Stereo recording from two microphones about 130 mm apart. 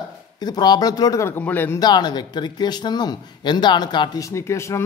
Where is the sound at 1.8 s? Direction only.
35° left (ahead or behind).